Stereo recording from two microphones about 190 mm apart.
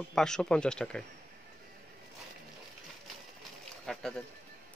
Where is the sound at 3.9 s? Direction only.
5° left (ahead or behind).